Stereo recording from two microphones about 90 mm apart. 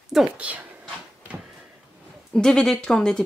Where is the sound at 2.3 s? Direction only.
10° left (ahead or behind).